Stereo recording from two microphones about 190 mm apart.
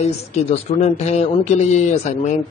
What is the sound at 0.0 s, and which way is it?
A man's voice, 35° left (ahead or behind).